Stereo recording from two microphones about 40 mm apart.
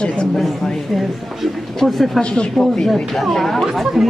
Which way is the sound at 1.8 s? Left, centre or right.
Centre.